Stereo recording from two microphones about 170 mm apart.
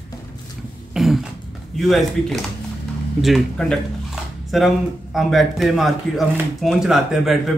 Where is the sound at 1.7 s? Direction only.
Centre (ahead or behind).